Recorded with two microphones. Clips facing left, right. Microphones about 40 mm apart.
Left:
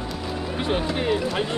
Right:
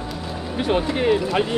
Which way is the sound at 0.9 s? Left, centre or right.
Centre.